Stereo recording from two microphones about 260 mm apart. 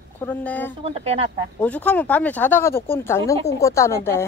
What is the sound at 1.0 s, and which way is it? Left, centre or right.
Speech, right.